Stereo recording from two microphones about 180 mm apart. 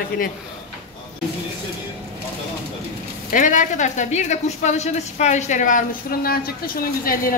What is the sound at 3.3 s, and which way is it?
Speech, 45° left (ahead or behind).